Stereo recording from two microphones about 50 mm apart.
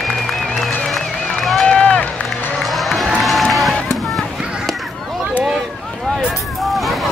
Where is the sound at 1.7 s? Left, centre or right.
Left.